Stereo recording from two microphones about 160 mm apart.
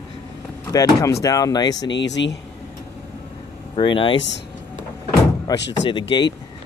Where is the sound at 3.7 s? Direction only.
30° left (ahead or behind).